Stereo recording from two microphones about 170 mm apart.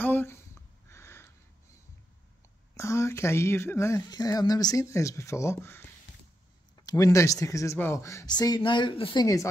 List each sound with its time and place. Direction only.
0.0 s a sound: 10° left (ahead or behind)
2.7 s speech: 15° left (ahead or behind)
6.9 s speech: 20° left (ahead or behind)